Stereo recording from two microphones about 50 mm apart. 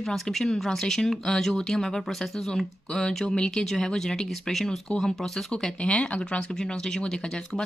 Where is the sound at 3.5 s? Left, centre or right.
Centre.